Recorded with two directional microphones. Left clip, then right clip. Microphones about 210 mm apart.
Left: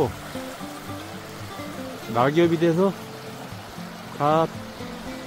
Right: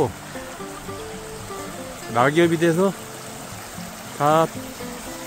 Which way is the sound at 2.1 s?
5° right (ahead or behind).